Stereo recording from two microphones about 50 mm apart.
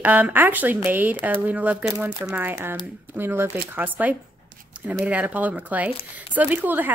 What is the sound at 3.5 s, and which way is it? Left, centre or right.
Speech, right.